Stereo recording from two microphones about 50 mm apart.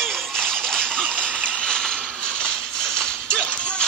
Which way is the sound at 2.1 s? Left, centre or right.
Centre.